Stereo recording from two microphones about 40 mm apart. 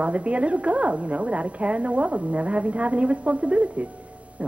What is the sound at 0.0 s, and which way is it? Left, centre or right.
Speech, right.